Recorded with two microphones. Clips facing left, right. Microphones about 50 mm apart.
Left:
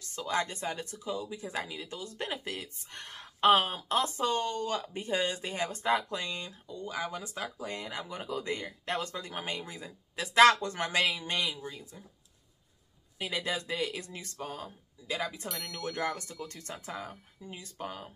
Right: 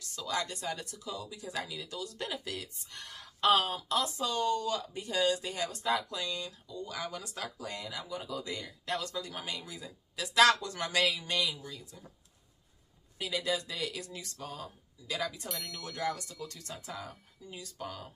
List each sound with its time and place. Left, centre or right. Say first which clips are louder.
0.0 s speech: left 3 dB; left
13.2 s speech: even; left
15.4 s a sound: left 2 dB; centre
15.8 s speech: left 2 dB; left